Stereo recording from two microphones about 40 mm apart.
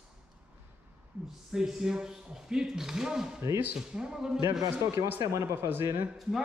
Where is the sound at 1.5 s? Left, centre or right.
Centre.